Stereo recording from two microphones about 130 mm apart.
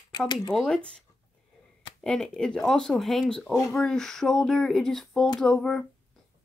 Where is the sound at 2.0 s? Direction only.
5° left (ahead or behind).